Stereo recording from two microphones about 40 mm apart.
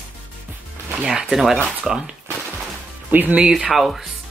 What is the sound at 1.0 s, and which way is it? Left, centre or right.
Speech, centre.